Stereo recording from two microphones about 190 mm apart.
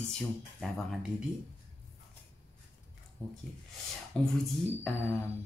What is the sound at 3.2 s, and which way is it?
Speech, 10° left (ahead or behind).